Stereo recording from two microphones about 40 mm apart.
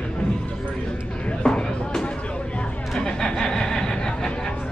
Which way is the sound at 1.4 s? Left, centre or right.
Centre.